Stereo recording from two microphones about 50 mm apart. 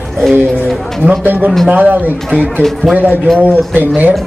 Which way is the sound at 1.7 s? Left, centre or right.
Right.